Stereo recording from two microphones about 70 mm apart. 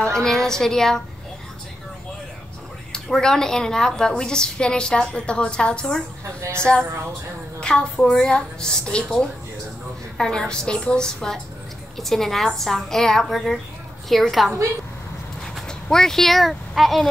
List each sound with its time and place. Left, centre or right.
0.0 s a woman's voice: centre
2.9 s a woman's voice: centre